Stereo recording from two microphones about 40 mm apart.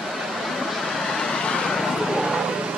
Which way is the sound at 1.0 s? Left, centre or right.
Centre.